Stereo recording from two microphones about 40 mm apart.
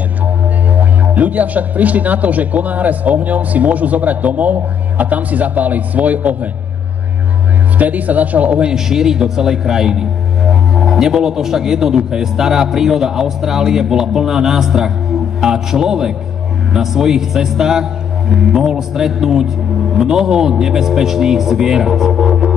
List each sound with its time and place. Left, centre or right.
0.7 s speech: right
7.8 s speech: right
8.7 s speech: centre